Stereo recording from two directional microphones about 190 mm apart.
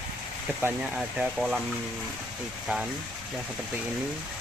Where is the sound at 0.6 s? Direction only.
5° right (ahead or behind).